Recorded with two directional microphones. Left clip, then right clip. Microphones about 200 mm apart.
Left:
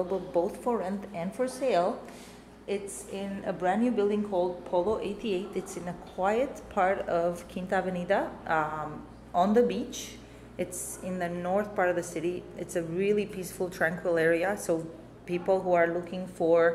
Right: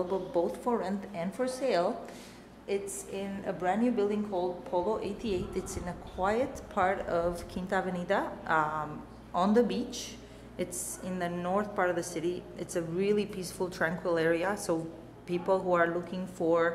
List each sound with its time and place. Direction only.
0.1 s a woman's voice: 5° left (ahead or behind)